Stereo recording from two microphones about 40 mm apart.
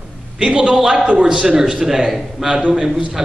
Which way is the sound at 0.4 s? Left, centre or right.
Right.